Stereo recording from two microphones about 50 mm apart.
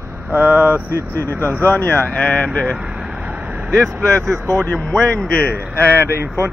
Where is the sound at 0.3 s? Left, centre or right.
Right.